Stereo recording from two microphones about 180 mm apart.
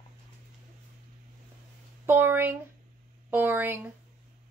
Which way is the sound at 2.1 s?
10° right (ahead or behind).